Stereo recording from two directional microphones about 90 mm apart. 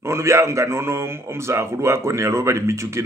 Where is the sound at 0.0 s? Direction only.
30° right (ahead or behind).